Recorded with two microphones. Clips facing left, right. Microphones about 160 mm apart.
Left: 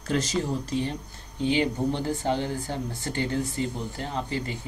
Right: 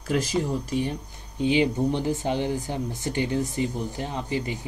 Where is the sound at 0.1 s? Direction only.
10° right (ahead or behind).